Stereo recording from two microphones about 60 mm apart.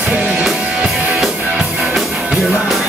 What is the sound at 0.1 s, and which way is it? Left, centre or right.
Music, right.